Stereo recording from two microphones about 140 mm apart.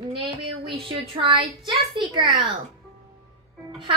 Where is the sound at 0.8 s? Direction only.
40° right (ahead or behind).